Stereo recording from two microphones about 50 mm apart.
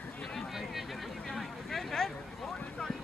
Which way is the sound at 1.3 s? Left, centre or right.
Centre.